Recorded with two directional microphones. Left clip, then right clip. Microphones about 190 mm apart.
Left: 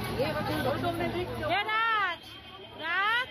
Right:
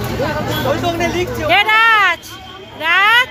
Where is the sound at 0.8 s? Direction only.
55° right (ahead or behind).